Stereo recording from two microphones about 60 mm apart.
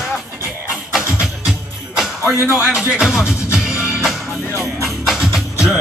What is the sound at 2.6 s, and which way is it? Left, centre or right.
Music, centre.